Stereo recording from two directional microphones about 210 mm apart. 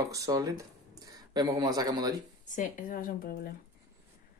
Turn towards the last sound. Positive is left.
turn(degrees=45)  # may be behind; listen again after turning